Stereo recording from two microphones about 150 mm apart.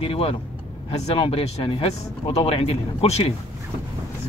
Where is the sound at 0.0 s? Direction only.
40° left (ahead or behind).